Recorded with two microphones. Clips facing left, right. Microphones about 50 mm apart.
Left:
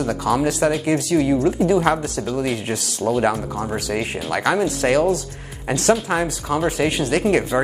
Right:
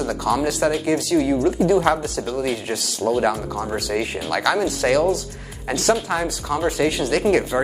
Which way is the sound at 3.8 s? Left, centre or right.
Left.